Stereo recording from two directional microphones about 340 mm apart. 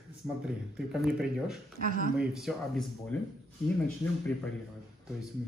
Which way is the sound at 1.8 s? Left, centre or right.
Right.